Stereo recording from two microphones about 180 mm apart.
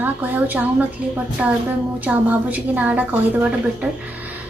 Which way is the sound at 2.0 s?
10° right (ahead or behind).